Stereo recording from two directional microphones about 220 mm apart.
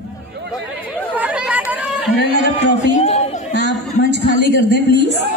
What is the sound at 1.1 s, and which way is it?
Chatter, 5° right (ahead or behind).